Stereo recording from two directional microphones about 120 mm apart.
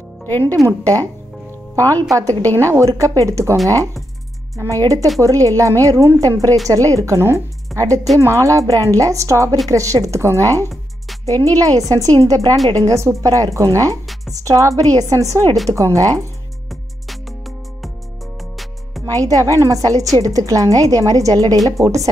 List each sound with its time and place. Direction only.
0.2 s music: 20° left (ahead or behind)
0.7 s a woman's voice: 30° right (ahead or behind)
11.4 s a woman's voice: 30° right (ahead or behind)
19.1 s a woman's voice: 30° right (ahead or behind)